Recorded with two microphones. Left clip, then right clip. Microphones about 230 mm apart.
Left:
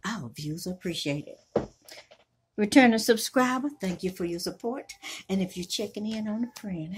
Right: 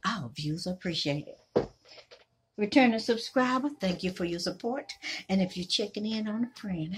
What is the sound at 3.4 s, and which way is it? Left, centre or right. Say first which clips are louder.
Speech: left 2 dB; centre.